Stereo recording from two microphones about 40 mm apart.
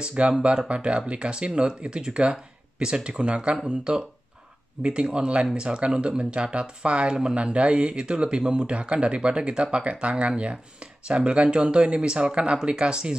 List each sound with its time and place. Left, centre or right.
0.0 s speech: right